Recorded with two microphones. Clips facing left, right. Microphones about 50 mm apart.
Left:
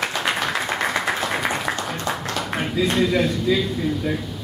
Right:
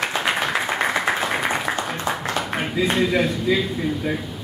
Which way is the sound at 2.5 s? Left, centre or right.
Centre.